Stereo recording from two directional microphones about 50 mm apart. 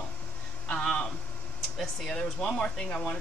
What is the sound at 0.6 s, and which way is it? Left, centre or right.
Speech, left.